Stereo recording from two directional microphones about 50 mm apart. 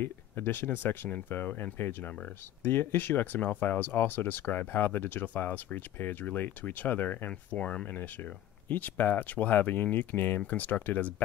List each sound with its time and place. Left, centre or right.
0.0 s speech: left
7.8 s speech: left